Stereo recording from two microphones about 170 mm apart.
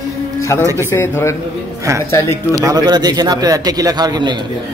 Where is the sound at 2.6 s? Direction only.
25° right (ahead or behind).